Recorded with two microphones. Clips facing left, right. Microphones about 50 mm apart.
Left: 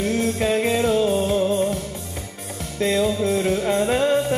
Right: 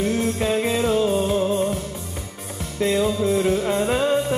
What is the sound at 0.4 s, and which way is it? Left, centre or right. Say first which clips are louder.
Music: left 1 dB; centre.